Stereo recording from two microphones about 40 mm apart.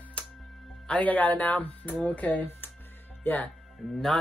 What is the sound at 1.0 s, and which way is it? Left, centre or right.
Speech, left.